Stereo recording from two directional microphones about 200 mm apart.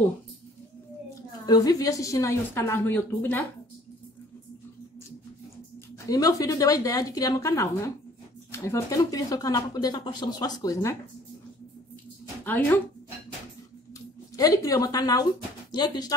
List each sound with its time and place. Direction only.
1.4 s speech: 20° left (ahead or behind)
6.0 s speech: 15° left (ahead or behind)
12.4 s speech: 10° left (ahead or behind)
14.3 s speech: 15° left (ahead or behind)